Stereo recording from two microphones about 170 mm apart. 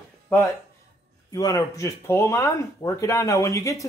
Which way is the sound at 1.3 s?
20° left (ahead or behind).